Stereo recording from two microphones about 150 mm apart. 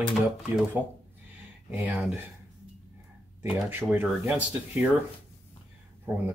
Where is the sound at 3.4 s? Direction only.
10° right (ahead or behind).